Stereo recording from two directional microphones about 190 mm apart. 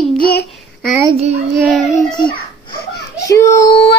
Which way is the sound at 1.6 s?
5° right (ahead or behind).